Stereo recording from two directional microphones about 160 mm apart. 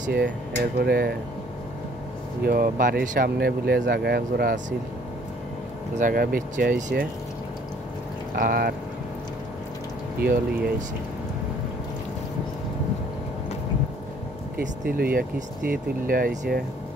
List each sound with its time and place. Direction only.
0.7 s speech: 75° right (ahead or behind)
2.4 s speech: 65° right (ahead or behind); by 4.6 s 80° right
5.9 s speech: 60° right (ahead or behind); by 7.1 s 80° right
8.4 s speech: 70° right (ahead or behind)
10.2 s speech: 75° right (ahead or behind)
14.9 s speech: 65° right (ahead or behind)